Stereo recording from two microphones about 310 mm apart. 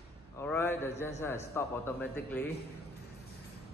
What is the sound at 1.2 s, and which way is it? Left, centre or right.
A man's voice, centre.